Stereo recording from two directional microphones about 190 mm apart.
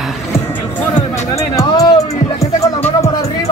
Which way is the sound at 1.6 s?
20° left (ahead or behind).